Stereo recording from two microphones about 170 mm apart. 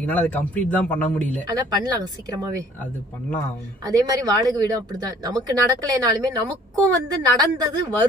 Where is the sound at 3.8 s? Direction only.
20° right (ahead or behind).